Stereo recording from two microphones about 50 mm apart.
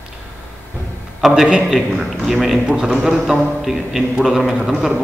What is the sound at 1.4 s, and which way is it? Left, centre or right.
Speech, centre.